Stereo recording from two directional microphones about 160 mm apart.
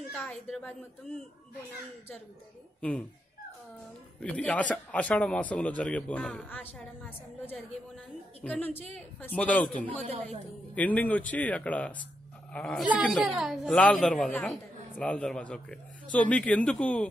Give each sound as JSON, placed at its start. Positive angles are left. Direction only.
{"t": 0.1, "sound": "a woman's voice", "side_deg": 5}
{"t": 2.8, "sound": "a man's voice", "side_deg": 5}
{"t": 4.2, "sound": "a man's voice", "side_deg": 10}
{"t": 9.8, "sound": "a woman's voice", "side_deg": -40}
{"t": 10.7, "sound": "a man's voice", "side_deg": 10}
{"t": 12.8, "sound": "a woman's voice", "side_deg": -10}